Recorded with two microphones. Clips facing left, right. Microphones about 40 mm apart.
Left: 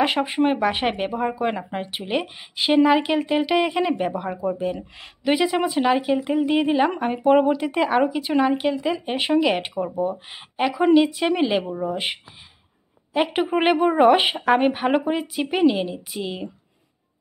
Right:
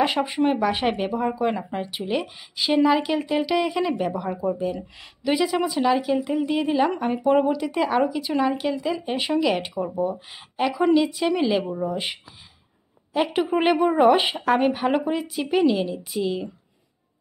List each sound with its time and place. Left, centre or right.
0.0 s speech: centre
11.6 s speech: centre
11.9 s a woman's voice: left